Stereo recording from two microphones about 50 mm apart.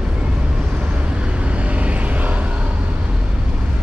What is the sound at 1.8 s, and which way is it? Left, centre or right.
Vehicle, right.